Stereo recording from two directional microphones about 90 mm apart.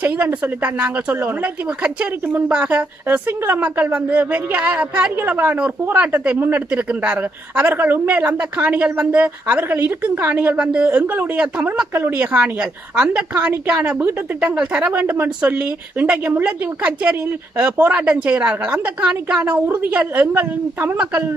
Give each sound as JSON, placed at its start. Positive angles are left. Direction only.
{"t": 0.0, "sound": "a woman's voice", "side_deg": -15}